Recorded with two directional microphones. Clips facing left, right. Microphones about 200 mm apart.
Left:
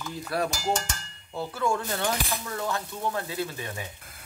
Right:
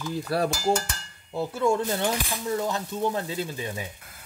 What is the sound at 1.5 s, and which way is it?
Speech, 20° right (ahead or behind).